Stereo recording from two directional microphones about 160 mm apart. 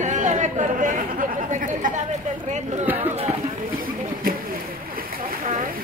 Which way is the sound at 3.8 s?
65° right (ahead or behind).